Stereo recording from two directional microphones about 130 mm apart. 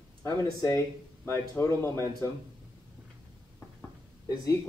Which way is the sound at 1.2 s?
20° left (ahead or behind).